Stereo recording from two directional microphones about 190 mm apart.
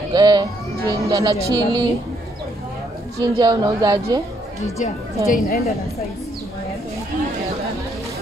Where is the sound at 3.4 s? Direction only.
20° right (ahead or behind).